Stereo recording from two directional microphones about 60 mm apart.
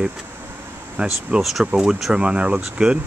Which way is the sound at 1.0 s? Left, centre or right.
Right.